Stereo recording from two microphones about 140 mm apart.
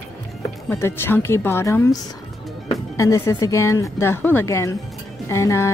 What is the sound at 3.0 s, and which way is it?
A woman's voice, 20° left (ahead or behind).